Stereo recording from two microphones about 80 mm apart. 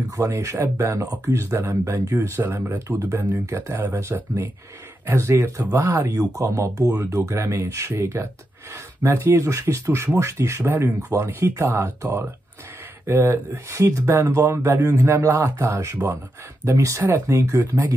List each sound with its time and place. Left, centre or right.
0.2 s speech: right